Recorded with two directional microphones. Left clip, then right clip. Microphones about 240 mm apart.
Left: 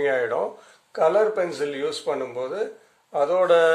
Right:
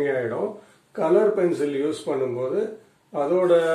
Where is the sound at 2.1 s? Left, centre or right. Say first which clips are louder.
Right 2 dB; left.